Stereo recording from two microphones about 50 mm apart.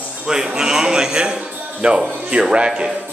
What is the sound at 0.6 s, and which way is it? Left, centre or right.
Bleat, centre.